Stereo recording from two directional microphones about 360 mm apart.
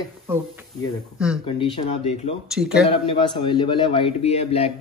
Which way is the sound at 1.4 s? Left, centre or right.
Centre.